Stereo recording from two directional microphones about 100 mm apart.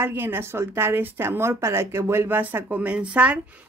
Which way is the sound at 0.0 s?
20° right (ahead or behind).